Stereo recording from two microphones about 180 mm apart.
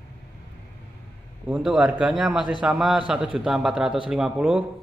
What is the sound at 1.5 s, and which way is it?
A man's voice, 5° right (ahead or behind).